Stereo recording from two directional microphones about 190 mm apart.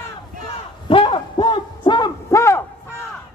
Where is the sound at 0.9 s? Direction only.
25° left (ahead or behind).